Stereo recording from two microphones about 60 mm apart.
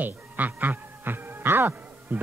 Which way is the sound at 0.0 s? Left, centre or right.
Right.